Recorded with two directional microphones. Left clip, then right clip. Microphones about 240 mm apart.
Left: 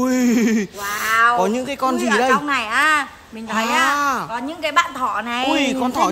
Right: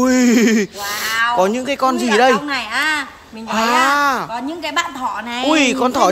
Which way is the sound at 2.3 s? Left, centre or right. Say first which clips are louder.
Even; centre.